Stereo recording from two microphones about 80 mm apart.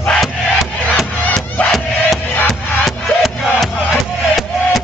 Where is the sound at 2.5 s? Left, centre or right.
Centre.